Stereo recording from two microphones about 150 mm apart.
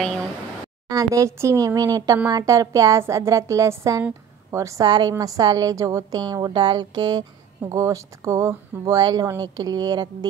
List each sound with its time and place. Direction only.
0.8 s a woman's voice: 20° right (ahead or behind)